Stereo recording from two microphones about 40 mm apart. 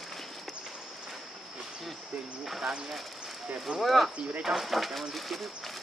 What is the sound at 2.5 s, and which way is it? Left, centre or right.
Speech, centre.